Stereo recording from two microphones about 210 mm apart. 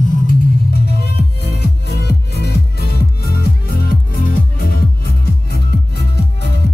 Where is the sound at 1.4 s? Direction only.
50° left (ahead or behind).